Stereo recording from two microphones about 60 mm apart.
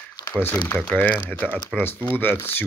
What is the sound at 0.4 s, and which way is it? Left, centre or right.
Speech, left.